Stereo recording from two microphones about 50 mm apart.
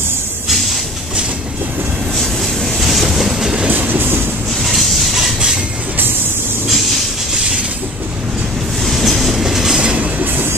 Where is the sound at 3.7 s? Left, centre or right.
Right.